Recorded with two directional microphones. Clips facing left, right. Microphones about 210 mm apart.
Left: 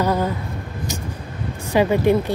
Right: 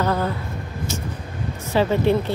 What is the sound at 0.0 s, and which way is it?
Speech, 10° left (ahead or behind).